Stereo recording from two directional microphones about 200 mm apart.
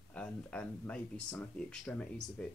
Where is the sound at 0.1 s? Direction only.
5° left (ahead or behind).